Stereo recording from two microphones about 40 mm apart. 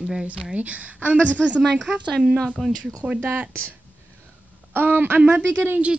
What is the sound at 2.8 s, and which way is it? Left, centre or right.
Speech, right.